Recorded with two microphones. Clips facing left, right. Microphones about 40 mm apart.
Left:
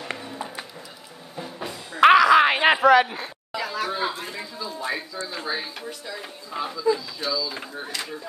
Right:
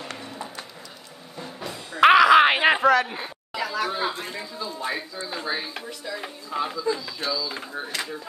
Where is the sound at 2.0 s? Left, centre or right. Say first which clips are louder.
Even; centre.